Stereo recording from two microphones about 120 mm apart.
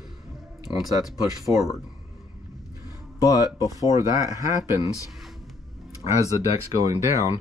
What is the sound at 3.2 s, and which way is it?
Speech, 30° left (ahead or behind).